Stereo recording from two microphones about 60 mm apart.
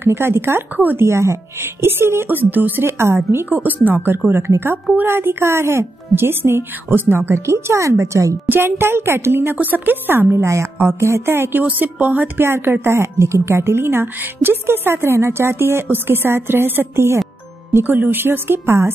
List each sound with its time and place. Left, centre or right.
0.0 s a woman's voice: right
2.2 s a woman's voice: right
3.4 s a woman's voice: right
8.5 s a woman's voice: right
9.6 s a woman's voice: right
11.6 s a woman's voice: right
12.4 s a woman's voice: right
12.9 s a woman's voice: right
17.8 s a woman's voice: right